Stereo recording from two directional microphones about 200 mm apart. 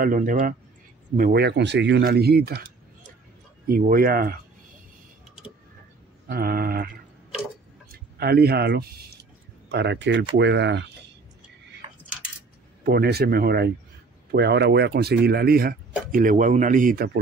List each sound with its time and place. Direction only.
0.0 s speech: 40° right (ahead or behind)
3.6 s speech: 45° right (ahead or behind)
6.2 s speech: 50° right (ahead or behind)
7.9 s speech: 50° right (ahead or behind)
12.8 s speech: 50° right (ahead or behind)